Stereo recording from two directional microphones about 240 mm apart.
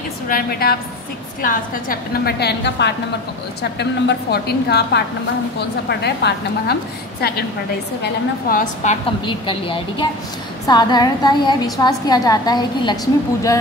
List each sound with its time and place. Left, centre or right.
0.3 s a woman's voice: left
8.5 s a woman's voice: left
9.2 s a woman's voice: left